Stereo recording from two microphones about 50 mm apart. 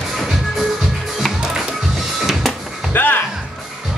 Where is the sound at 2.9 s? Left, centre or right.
Left.